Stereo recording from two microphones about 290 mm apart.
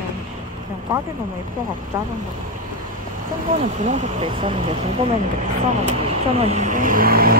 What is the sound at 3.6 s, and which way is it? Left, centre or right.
Speech, right.